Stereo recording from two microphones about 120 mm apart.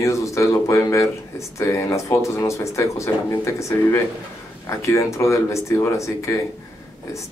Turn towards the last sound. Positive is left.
turn(degrees=25)  # may be behind; listen again after turning